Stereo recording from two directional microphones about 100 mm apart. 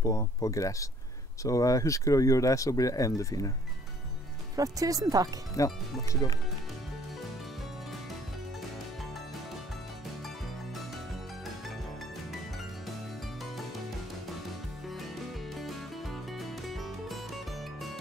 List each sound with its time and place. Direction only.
0.0 s speech: 35° left (ahead or behind)
4.6 s speech: 35° right (ahead or behind)
5.6 s speech: 35° left (ahead or behind)
15.5 s music: centre (ahead or behind)